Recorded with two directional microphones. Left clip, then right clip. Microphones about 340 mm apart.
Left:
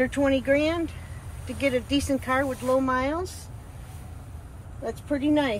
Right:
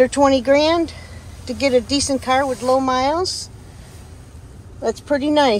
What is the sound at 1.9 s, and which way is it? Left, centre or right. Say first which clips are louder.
Speech: right 7 dB; centre.